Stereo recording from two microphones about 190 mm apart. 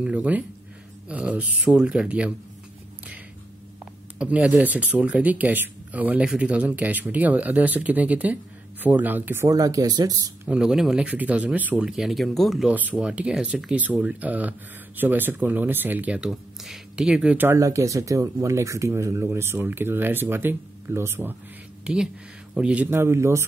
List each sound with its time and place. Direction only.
0.0 s speech: 5° right (ahead or behind)
4.2 s speech: 5° right (ahead or behind)
10.5 s speech: 5° right (ahead or behind)